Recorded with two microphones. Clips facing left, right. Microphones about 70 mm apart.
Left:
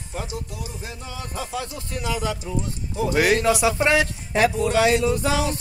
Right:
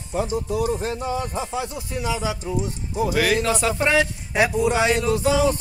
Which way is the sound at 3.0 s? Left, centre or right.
Right.